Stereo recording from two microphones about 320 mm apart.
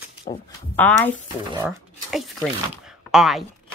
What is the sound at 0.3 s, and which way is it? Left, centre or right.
Speech, left.